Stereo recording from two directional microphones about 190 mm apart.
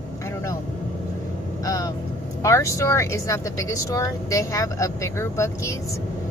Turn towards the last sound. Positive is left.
turn(degrees=15)  # may be behind; listen again after turning